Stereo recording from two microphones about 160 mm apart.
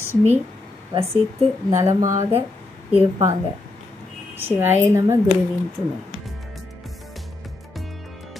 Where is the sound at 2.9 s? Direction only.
20° right (ahead or behind).